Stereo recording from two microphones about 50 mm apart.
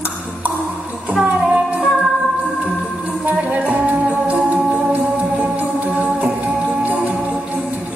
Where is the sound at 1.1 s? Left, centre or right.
Centre.